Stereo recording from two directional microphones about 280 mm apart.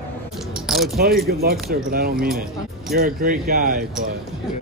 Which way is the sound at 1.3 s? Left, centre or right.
Right.